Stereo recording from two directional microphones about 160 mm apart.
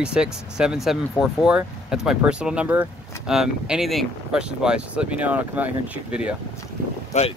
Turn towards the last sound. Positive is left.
turn(degrees=45)  # may be behind; listen again after turning